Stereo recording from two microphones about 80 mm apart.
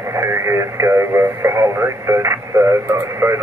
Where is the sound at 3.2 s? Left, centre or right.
Right.